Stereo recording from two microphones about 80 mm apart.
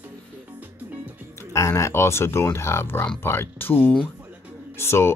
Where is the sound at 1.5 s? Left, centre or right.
Left.